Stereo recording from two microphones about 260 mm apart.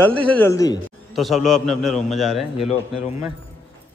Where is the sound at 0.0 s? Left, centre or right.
Centre.